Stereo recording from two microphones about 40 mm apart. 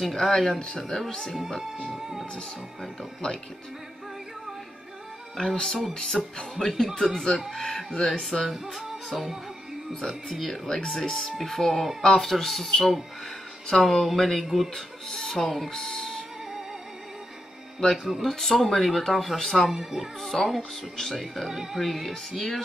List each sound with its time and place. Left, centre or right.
0.0 s speech: centre
1.6 s music: centre
5.4 s speech: centre
8.7 s music: centre
10.3 s speech: centre
12.0 s speech: centre
14.4 s music: centre
14.7 s speech: centre
15.4 s speech: centre
15.7 s speech: centre
17.9 s music: centre
18.2 s speech: centre
19.7 s music: centre
20.2 s speech: centre